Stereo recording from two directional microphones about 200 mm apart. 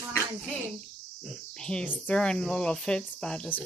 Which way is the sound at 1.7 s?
5° left (ahead or behind).